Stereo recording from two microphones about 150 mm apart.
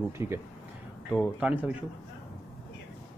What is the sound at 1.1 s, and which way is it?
Speech, 5° right (ahead or behind).